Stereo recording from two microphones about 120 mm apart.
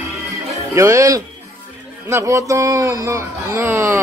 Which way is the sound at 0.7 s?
25° right (ahead or behind).